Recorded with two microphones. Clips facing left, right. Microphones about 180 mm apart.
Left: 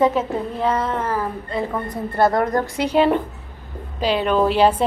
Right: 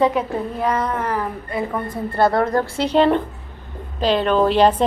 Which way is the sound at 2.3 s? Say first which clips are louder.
Right 1 dB; 15° left (ahead or behind).